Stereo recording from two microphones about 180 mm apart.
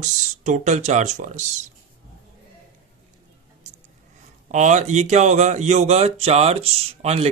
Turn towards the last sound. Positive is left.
turn(degrees=-35)  # may be behind; listen again after turning